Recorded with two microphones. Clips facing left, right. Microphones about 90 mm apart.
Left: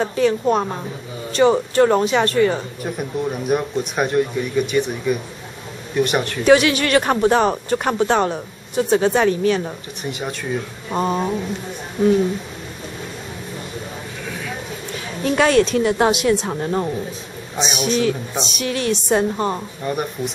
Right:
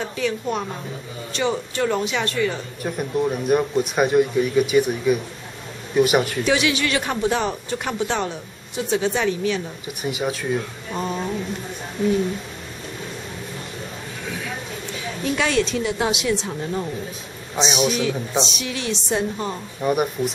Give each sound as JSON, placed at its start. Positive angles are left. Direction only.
{"t": 0.0, "sound": "a woman's voice", "side_deg": 40}
{"t": 2.8, "sound": "speech", "side_deg": 0}
{"t": 6.4, "sound": "speech", "side_deg": 50}
{"t": 10.0, "sound": "speech", "side_deg": -5}
{"t": 10.9, "sound": "speech", "side_deg": 45}
{"t": 15.2, "sound": "speech", "side_deg": 45}
{"t": 19.8, "sound": "speech", "side_deg": -10}